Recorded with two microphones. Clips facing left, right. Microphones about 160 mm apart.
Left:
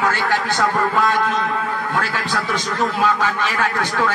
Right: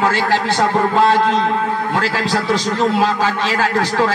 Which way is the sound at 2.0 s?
90° right.